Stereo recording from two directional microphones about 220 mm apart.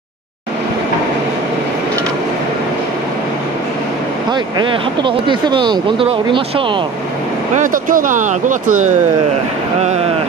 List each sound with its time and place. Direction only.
4.3 s speech: 20° right (ahead or behind)
7.5 s speech: 35° right (ahead or behind)